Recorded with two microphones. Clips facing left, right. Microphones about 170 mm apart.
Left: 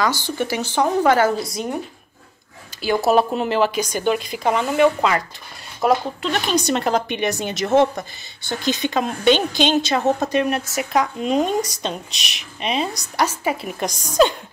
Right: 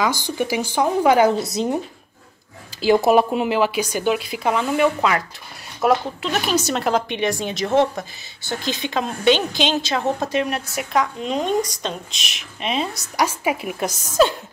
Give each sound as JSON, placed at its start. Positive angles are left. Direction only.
{"t": 0.4, "sound": "speech", "side_deg": -10}
{"t": 1.5, "sound": "speech", "side_deg": -25}
{"t": 2.8, "sound": "speech", "side_deg": -25}
{"t": 3.1, "sound": "speech", "side_deg": -10}
{"t": 13.1, "sound": "speech", "side_deg": -10}